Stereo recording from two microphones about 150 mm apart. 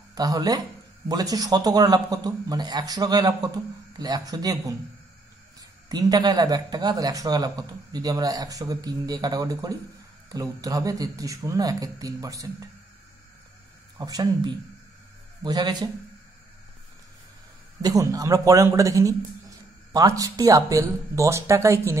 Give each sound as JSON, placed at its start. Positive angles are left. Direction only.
{"t": 0.1, "sound": "speech", "side_deg": -25}
{"t": 5.9, "sound": "speech", "side_deg": -25}
{"t": 13.9, "sound": "speech", "side_deg": -25}
{"t": 17.8, "sound": "speech", "side_deg": -25}